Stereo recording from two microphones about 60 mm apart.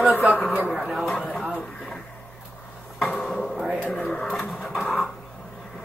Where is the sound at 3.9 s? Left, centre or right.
Centre.